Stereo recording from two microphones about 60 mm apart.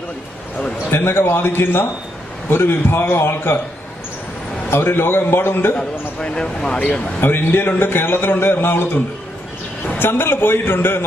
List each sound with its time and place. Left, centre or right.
0.9 s a man's voice: left
4.6 s a man's voice: left
5.8 s speech: centre
6.8 s a man's voice: left